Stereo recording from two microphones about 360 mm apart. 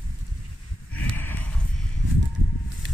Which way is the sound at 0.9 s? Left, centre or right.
Centre.